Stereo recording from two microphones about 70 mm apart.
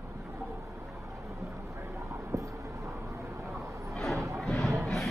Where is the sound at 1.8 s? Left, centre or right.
Right.